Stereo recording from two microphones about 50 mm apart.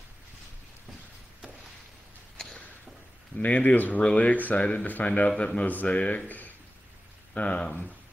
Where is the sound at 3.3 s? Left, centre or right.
Left.